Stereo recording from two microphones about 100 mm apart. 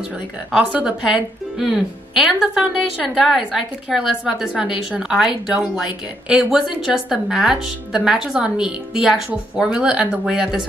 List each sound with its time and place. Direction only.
0.5 s speech: 5° right (ahead or behind)